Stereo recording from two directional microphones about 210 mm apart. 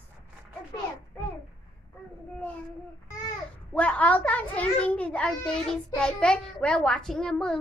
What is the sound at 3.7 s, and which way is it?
A child's voice, 5° left (ahead or behind).